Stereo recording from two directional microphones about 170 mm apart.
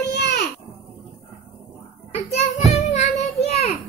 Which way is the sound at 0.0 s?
75° left (ahead or behind).